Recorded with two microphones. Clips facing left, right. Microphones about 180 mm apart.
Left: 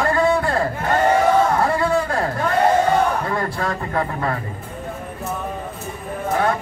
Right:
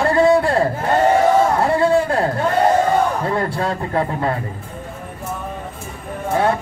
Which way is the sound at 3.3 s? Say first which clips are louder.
Right 3 dB; 25° right (ahead or behind).